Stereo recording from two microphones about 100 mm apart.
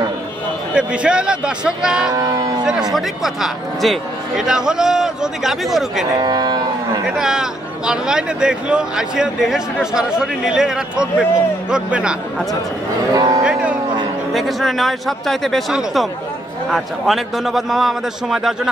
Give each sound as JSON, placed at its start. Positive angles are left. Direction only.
{"t": 0.7, "sound": "a man's voice", "side_deg": -10}
{"t": 2.1, "sound": "speech", "side_deg": -40}
{"t": 2.6, "sound": "speech", "side_deg": -5}
{"t": 6.1, "sound": "speech", "side_deg": -45}
{"t": 7.2, "sound": "a man's voice", "side_deg": -5}
{"t": 13.1, "sound": "speech", "side_deg": -40}
{"t": 13.4, "sound": "music", "side_deg": -10}
{"t": 14.3, "sound": "speech", "side_deg": 0}